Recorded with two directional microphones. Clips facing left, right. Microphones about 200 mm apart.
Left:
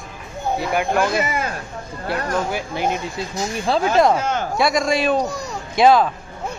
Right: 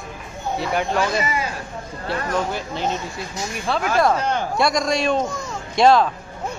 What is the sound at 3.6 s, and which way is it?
Speech, 30° left (ahead or behind).